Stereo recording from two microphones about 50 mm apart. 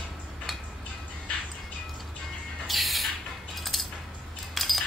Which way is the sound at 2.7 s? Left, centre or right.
Centre.